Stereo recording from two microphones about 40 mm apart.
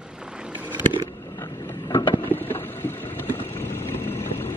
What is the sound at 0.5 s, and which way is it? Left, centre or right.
Vehicle, right.